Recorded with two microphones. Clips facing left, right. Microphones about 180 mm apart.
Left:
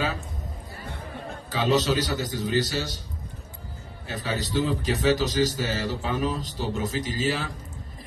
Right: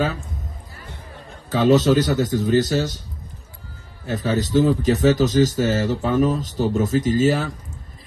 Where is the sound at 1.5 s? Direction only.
50° right (ahead or behind).